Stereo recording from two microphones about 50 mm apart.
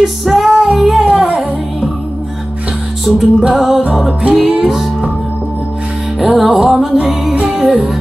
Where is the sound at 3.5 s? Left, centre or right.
Centre.